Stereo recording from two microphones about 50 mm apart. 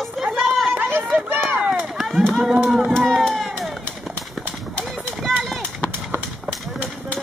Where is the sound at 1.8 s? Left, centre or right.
Centre.